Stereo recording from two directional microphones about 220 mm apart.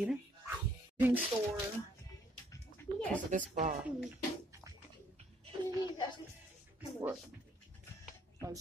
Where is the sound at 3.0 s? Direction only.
5° left (ahead or behind).